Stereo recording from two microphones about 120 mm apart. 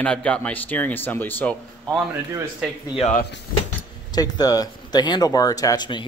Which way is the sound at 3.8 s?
35° left (ahead or behind).